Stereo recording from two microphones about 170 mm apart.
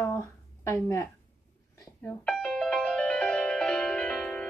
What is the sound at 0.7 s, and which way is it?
Speech, 15° left (ahead or behind).